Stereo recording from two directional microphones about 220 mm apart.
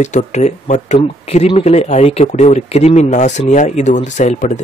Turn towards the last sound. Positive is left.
turn(degrees=30)  # may be behind; listen again after turning